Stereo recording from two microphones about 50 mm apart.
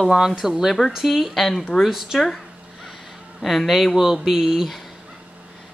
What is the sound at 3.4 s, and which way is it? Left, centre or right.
A woman's voice, centre.